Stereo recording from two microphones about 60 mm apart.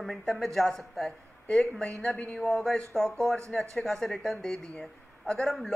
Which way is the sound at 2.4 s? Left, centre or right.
Centre.